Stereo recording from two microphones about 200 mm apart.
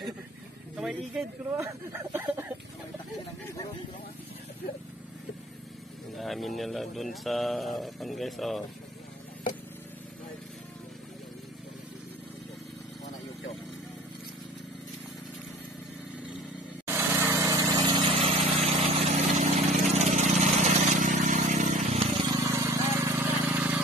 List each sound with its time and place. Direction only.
0.7 s speech: centre (ahead or behind)
1.6 s speech: 15° right (ahead or behind)
6.1 s speech: centre (ahead or behind)
16.8 s vehicle: 10° right (ahead or behind); by 22.4 s 30° right (ahead or behind)
22.4 s a sound: 15° right (ahead or behind)